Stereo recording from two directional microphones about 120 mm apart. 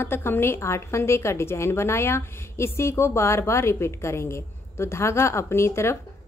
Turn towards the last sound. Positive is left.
turn(degrees=20)  # may be behind; listen again after turning